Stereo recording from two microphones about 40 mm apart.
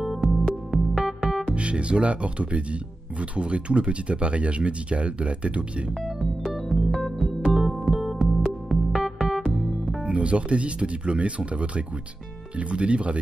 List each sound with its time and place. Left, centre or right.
0.1 s music: centre
1.5 s speech: right
6.0 s keyboard: centre
7.4 s music: centre
10.0 s speech: right